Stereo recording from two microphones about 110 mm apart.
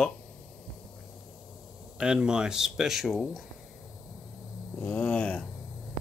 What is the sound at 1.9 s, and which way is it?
Speech, 10° right (ahead or behind).